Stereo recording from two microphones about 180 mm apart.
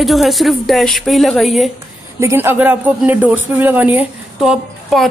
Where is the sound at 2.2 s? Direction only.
15° right (ahead or behind).